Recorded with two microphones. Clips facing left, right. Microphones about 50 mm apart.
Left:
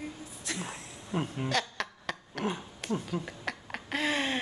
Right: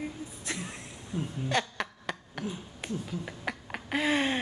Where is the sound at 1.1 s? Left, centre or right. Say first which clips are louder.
Left 2 dB; left.